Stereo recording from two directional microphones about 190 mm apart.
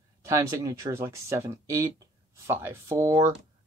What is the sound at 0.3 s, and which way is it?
Speech, 15° right (ahead or behind).